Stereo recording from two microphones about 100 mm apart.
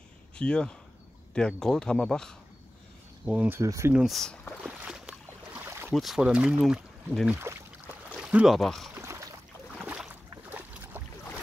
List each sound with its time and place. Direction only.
0.4 s speech: 10° left (ahead or behind)
3.3 s speech: 15° right (ahead or behind)
3.6 s speech: 30° right (ahead or behind)
3.9 s speech: centre (ahead or behind)
4.6 s boat: 10° right (ahead or behind)
5.7 s boat: 25° right (ahead or behind)
5.9 s speech: 5° right (ahead or behind)
7.5 s speech: 25° right (ahead or behind)
8.1 s boat: 10° right (ahead or behind)
8.5 s speech: centre (ahead or behind)
8.9 s boat: 30° right (ahead or behind)
9.8 s boat: 5° right (ahead or behind)